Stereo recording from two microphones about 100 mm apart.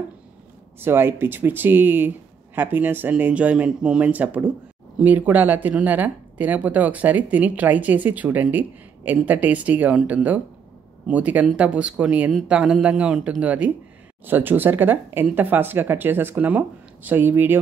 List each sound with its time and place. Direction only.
0.7 s speech: 20° right (ahead or behind)